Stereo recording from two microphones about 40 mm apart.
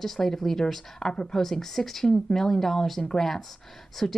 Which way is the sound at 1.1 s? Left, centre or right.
Centre.